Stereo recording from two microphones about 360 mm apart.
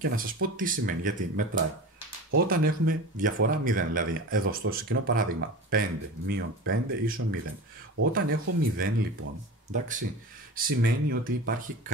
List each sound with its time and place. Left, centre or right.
0.0 s speech: right